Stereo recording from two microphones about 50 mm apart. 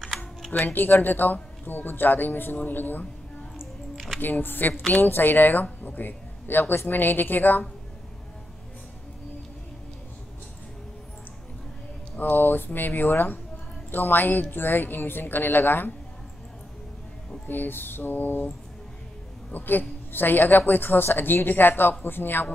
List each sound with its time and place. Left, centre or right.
0.5 s speech: left
3.9 s music: centre
4.2 s speech: left
12.2 s a woman's voice: left
17.5 s a woman's voice: left
19.5 s a woman's voice: left